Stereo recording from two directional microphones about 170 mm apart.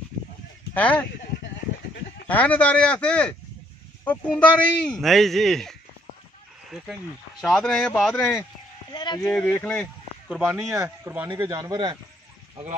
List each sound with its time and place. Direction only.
0.7 s speech: 10° left (ahead or behind)
2.2 s speech: 10° left (ahead or behind)
8.9 s a sound: 25° left (ahead or behind)
9.3 s speech: 5° left (ahead or behind)
10.3 s speech: 5° right (ahead or behind)
11.3 s speech: 20° right (ahead or behind)